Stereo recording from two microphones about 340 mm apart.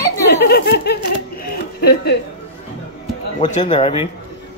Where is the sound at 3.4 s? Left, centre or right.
Centre.